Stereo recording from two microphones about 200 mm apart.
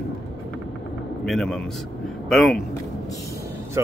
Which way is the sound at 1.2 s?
Centre (ahead or behind).